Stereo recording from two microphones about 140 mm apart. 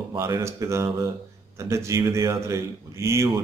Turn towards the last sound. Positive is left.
turn(degrees=-20)  # may be behind; listen again after turning